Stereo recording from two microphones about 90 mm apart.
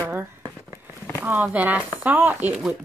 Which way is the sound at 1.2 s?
20° right (ahead or behind).